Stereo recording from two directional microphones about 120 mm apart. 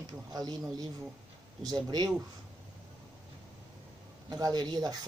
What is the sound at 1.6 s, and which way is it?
Speech, 35° right (ahead or behind).